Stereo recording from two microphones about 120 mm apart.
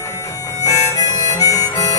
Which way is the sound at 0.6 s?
30° left (ahead or behind).